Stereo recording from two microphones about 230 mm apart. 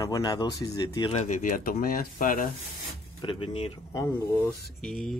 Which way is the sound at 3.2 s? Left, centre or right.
Left.